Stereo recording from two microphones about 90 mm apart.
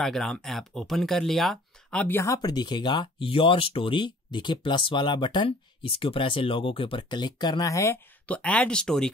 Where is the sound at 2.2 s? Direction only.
35° left (ahead or behind).